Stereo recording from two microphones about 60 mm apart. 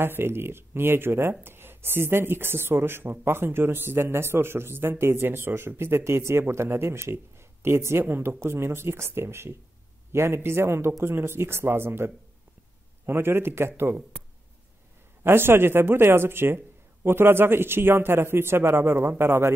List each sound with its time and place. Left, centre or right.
0.0 s a woman's voice: right
15.2 s a woman's voice: right